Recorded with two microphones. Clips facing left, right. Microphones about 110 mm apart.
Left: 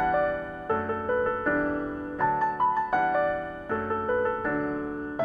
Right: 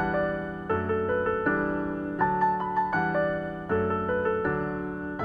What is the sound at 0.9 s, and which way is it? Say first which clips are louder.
Music: right 2 dB; 25° left (ahead or behind).